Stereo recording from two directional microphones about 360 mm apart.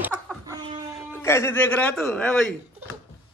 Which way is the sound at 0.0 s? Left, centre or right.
Centre.